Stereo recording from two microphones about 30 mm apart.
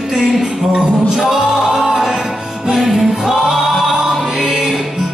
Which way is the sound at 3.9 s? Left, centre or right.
Centre.